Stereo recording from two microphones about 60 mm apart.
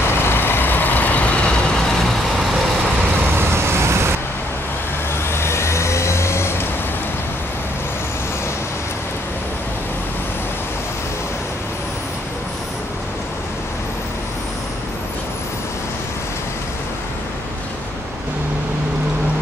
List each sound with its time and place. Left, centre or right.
0.1 s vehicle: left
3.3 s vehicle: right
5.3 s vehicle: left